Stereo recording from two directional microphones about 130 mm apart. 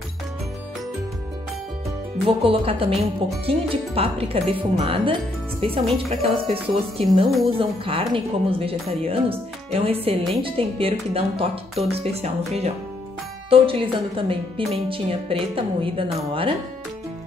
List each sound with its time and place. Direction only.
2.2 s a woman's voice: 45° right (ahead or behind)